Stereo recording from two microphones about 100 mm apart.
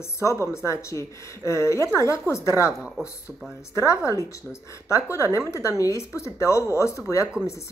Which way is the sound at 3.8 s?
30° left (ahead or behind).